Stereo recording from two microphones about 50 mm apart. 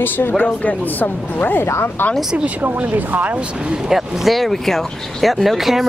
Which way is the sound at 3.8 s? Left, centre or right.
Centre.